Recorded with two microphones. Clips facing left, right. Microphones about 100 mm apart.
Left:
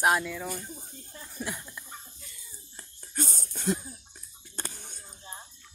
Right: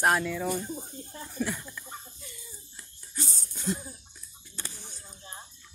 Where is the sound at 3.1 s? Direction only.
50° left (ahead or behind).